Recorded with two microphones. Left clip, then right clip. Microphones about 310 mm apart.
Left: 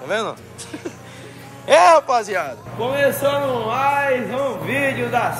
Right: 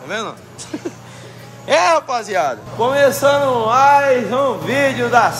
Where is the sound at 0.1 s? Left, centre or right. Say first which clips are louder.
Left 1 dB; centre.